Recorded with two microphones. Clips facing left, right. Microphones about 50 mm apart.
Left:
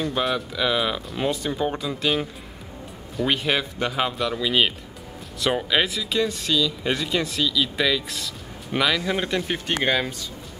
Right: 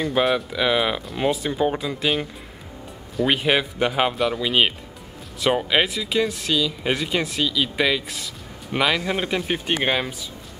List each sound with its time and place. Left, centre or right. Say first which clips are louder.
0.0 s speech: right 4 dB; centre
3.3 s speech: right 3 dB; centre